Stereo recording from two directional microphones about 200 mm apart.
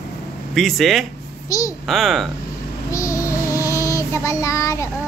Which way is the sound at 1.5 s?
15° left (ahead or behind).